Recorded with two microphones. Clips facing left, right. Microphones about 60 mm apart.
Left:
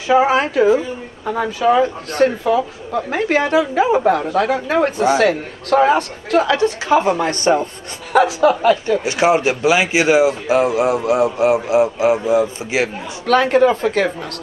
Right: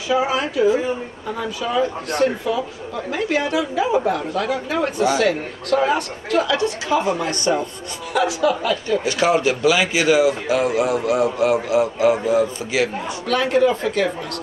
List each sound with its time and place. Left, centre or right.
0.1 s a woman's voice: left
13.3 s a woman's voice: left